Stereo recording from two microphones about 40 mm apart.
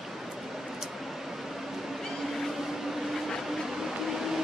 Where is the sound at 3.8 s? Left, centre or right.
Centre.